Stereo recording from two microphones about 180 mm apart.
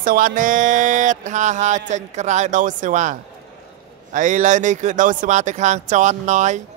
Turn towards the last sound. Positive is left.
turn(degrees=-40)  # may be behind; listen again after turning